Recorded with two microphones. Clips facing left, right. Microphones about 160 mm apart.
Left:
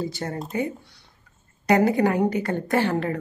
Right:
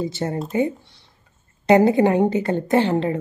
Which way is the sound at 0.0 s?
20° right (ahead or behind).